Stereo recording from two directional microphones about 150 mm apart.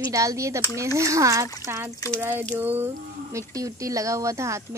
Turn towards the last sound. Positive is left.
turn(degrees=-20)  # may be behind; listen again after turning